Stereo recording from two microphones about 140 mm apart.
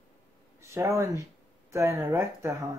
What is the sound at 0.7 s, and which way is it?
Speech, 20° right (ahead or behind).